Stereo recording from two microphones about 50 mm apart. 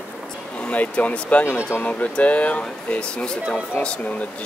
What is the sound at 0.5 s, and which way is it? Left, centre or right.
Speech, left.